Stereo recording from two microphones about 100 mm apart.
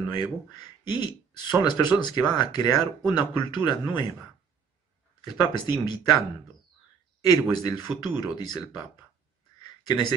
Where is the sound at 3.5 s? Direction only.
50° left (ahead or behind).